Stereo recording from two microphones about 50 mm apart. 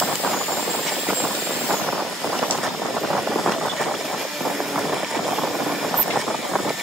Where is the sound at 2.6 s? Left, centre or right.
Centre.